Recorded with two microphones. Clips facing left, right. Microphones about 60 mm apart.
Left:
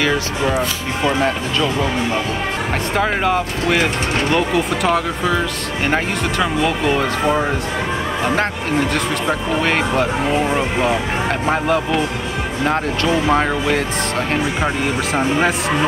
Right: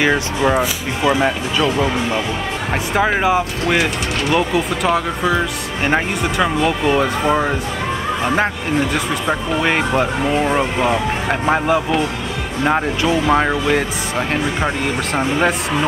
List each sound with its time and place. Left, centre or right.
0.0 s speech: centre
2.9 s speech: centre
8.9 s speech: centre